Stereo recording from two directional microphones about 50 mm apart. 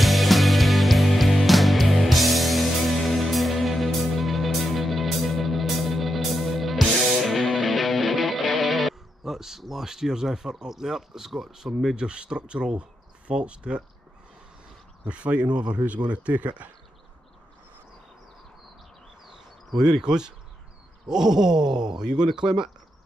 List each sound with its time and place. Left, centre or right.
0.0 s music: centre; by 12.8 s right
13.3 s speech: right
15.0 s speech: right
19.2 s a sound: centre
21.1 s speech: centre